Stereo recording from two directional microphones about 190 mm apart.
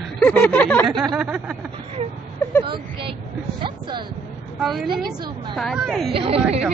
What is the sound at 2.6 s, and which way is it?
Speech, 25° right (ahead or behind).